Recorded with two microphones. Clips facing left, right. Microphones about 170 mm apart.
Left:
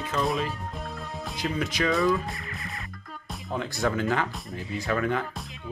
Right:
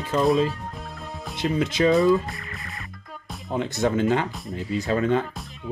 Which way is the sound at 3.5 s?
25° right (ahead or behind).